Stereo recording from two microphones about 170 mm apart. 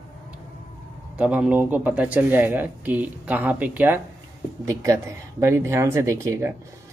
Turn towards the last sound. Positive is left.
turn(degrees=-15)  # may be behind; listen again after turning